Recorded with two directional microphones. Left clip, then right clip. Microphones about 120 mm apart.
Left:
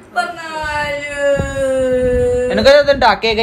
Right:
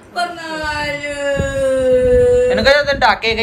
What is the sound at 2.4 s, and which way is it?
Speech, 30° left (ahead or behind).